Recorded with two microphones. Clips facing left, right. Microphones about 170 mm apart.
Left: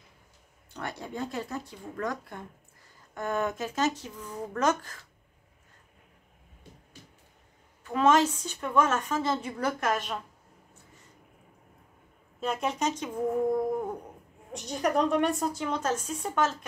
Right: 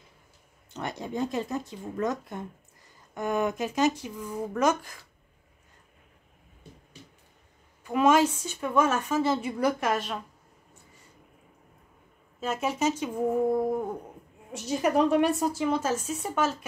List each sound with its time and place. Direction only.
0.7 s a woman's voice: 20° right (ahead or behind)
7.8 s a woman's voice: 10° right (ahead or behind)
12.4 s a woman's voice: 5° right (ahead or behind)